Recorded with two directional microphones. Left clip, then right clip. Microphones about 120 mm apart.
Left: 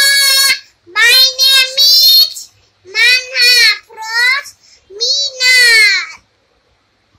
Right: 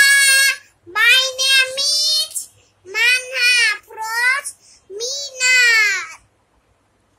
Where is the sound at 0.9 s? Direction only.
20° right (ahead or behind).